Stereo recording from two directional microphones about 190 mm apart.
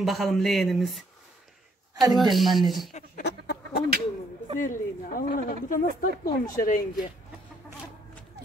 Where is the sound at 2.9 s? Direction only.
45° left (ahead or behind).